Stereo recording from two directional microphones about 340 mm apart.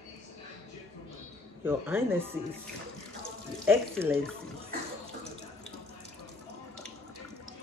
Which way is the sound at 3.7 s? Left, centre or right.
Centre.